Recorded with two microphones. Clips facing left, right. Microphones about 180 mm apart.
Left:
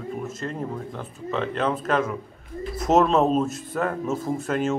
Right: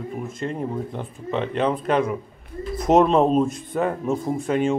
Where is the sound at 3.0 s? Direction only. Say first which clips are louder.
Right 2 dB; 10° right (ahead or behind).